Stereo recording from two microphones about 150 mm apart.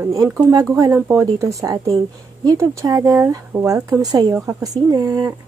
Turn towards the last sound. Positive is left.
turn(degrees=-25)  # may be behind; listen again after turning